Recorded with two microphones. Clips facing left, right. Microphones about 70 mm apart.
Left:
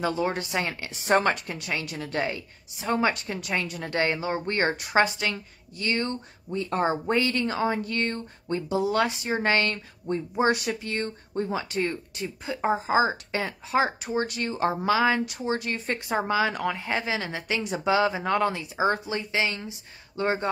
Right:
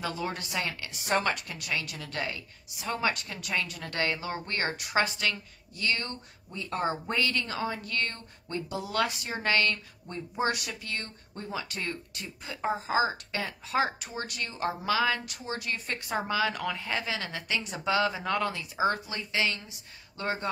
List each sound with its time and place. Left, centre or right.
0.0 s a woman's voice: left